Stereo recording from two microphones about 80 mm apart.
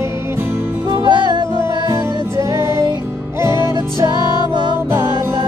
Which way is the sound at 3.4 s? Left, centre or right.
Right.